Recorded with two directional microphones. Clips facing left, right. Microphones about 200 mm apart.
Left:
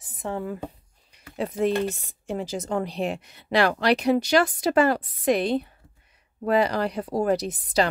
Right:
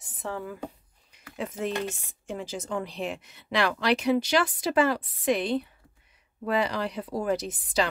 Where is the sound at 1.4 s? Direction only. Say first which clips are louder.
Left 7 dB; 35° left (ahead or behind).